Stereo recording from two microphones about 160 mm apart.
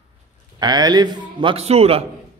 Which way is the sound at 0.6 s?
25° right (ahead or behind).